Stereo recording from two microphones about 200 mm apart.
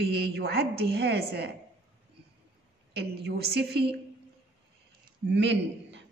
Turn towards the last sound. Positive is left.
turn(degrees=-60)  # may be behind; listen again after turning